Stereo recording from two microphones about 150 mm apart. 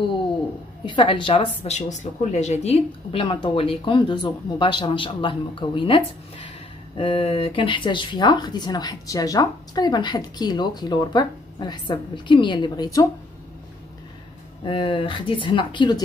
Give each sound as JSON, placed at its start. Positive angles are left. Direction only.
{"t": 0.8, "sound": "speech", "side_deg": 35}
{"t": 14.6, "sound": "speech", "side_deg": 35}